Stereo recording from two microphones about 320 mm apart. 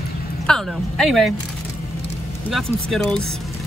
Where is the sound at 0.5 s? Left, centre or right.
Centre.